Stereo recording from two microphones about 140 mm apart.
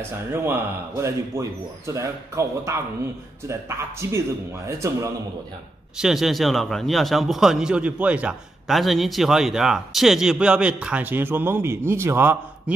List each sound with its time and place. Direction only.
0.0 s speech: 15° right (ahead or behind)
5.9 s a man's voice: centre (ahead or behind)